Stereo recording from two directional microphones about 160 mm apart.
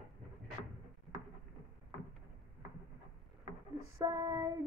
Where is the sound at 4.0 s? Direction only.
25° right (ahead or behind).